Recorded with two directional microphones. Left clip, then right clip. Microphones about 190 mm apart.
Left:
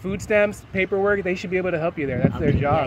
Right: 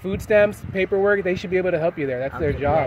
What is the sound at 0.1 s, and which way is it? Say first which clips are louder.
Speech: right 3 dB; centre (ahead or behind).